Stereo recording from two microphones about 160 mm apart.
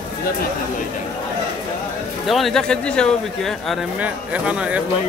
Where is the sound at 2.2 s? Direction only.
Centre (ahead or behind).